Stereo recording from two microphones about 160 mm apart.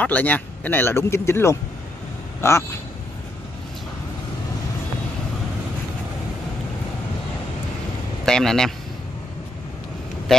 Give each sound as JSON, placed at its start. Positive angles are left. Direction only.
{"t": 0.0, "sound": "speech", "side_deg": 10}
{"t": 8.3, "sound": "speech", "side_deg": 5}